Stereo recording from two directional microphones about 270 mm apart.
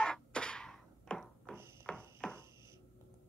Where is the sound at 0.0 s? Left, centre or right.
Centre.